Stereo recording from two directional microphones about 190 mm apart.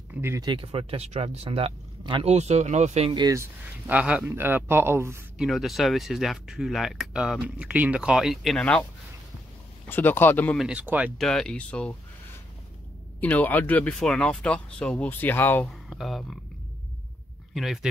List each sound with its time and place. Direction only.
0.1 s speech: 10° right (ahead or behind)
0.5 s speech: 30° right (ahead or behind)
3.1 s a man's voice: 20° right (ahead or behind)
5.4 s speech: centre (ahead or behind)
9.8 s speech: 10° left (ahead or behind)
10.6 s a man's voice: 5° right (ahead or behind)
11.1 s speech: centre (ahead or behind)
13.2 s speech: 10° left (ahead or behind)